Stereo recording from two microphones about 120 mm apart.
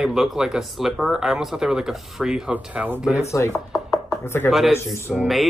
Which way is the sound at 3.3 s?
25° left (ahead or behind).